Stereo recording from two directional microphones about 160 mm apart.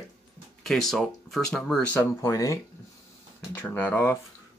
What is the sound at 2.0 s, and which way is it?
Speech, 20° left (ahead or behind).